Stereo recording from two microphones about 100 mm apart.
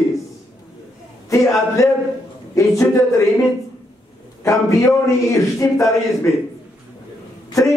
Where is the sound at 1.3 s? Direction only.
30° left (ahead or behind).